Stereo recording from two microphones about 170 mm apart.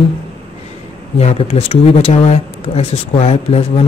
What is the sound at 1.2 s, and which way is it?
Speech, 35° left (ahead or behind).